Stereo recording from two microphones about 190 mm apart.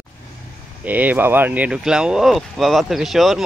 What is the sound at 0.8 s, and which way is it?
Speech, 10° right (ahead or behind).